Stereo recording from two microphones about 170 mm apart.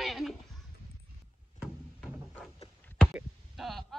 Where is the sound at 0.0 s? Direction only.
Centre (ahead or behind).